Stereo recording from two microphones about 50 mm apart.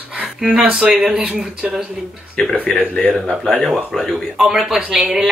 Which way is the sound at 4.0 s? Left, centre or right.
Centre.